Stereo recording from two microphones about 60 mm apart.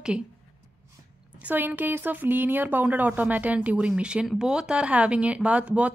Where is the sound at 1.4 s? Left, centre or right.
Right.